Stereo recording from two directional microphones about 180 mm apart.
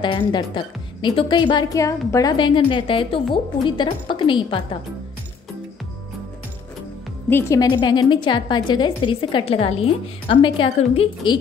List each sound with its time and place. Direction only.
0.0 s a woman's voice: 25° left (ahead or behind)
7.2 s a woman's voice: 15° left (ahead or behind)